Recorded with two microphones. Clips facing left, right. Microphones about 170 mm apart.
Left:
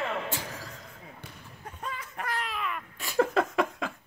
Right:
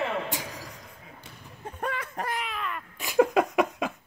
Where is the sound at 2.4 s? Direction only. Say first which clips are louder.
Even; centre (ahead or behind).